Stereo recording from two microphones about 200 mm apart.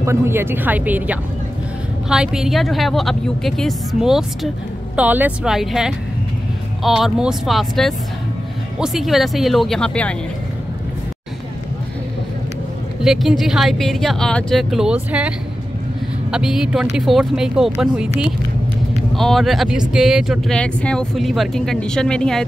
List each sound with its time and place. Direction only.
0.0 s speech: 15° right (ahead or behind); by 10.1 s 5° left (ahead or behind)
13.0 s speech: centre (ahead or behind)
19.1 s speech: centre (ahead or behind)